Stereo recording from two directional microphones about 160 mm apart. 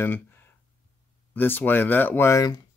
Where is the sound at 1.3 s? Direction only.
10° left (ahead or behind).